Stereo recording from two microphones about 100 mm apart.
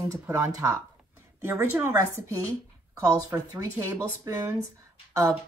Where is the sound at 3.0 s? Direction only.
35° right (ahead or behind).